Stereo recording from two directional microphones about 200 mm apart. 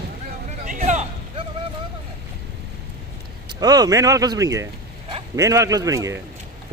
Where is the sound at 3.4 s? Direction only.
20° right (ahead or behind).